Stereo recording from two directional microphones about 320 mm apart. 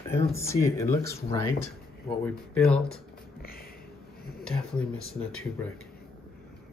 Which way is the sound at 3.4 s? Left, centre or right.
Left.